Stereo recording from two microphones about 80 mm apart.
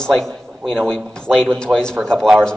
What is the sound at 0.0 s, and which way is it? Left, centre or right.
A man's voice, centre.